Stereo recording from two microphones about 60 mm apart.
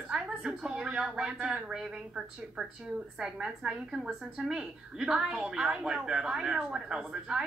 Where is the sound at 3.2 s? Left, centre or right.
Centre.